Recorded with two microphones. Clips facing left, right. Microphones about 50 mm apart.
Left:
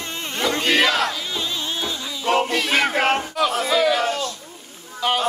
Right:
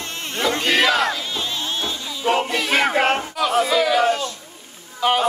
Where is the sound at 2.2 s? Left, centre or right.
Centre.